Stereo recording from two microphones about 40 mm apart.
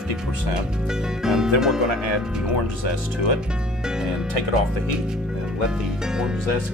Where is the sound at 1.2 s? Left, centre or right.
Centre.